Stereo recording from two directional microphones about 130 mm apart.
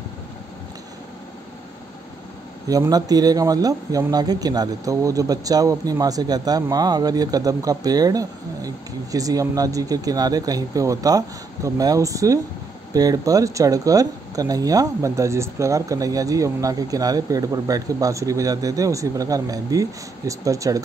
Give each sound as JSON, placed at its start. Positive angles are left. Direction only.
{"t": 2.7, "sound": "a man's voice", "side_deg": -30}